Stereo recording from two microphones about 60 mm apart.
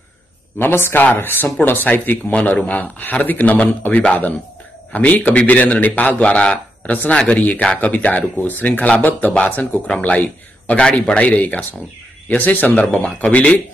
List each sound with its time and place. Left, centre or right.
0.6 s speech: left
2.3 s a man's voice: left